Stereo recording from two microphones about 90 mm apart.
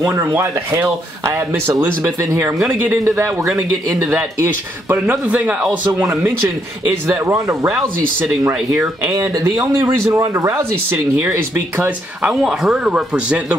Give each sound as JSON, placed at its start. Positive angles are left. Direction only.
{"t": 0.0, "sound": "speech", "side_deg": -15}
{"t": 6.8, "sound": "speech", "side_deg": -30}
{"t": 9.1, "sound": "speech", "side_deg": -40}
{"t": 9.8, "sound": "speech", "side_deg": -30}
{"t": 10.9, "sound": "speech", "side_deg": -20}
{"t": 12.2, "sound": "a man's voice", "side_deg": -10}